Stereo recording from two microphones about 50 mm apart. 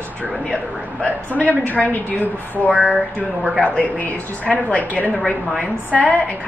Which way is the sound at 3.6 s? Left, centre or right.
Left.